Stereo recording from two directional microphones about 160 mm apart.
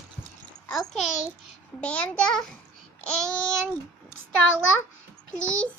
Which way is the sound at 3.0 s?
5° left (ahead or behind).